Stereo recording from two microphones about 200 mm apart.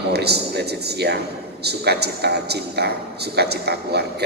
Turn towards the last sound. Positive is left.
turn(degrees=-55)  # may be behind; listen again after turning